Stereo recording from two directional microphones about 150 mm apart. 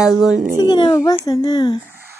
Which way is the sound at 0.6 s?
30° left (ahead or behind).